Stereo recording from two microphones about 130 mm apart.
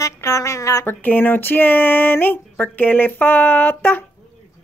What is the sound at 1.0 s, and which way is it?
Speech, 15° left (ahead or behind).